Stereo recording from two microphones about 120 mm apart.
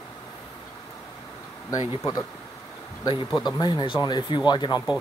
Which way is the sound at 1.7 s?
35° left (ahead or behind).